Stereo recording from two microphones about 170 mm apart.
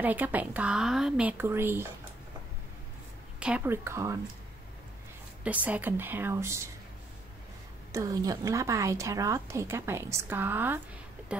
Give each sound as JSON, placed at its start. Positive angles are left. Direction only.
{"t": 0.0, "sound": "a woman's voice", "side_deg": -10}
{"t": 3.3, "sound": "a woman's voice", "side_deg": -5}
{"t": 5.4, "sound": "a woman's voice", "side_deg": -10}
{"t": 7.9, "sound": "a woman's voice", "side_deg": -20}